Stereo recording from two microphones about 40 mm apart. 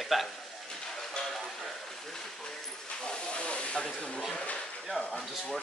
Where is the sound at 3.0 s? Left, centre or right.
Left.